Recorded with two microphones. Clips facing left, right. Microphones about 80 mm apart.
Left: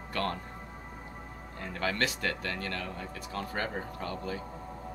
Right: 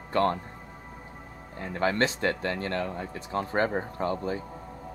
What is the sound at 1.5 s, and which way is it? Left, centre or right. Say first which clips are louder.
Speech: right 6 dB; right.